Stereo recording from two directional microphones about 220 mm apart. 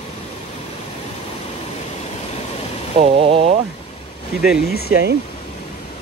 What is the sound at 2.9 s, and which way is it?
Speech, 25° right (ahead or behind).